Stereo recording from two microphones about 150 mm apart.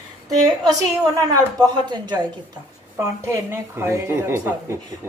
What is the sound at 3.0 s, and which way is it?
Speech, 15° right (ahead or behind).